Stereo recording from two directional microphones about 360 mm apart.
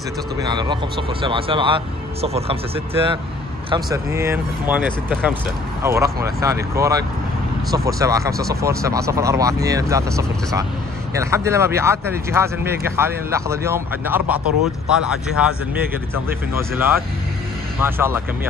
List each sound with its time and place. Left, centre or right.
0.4 s speech: centre
16.5 s speech: centre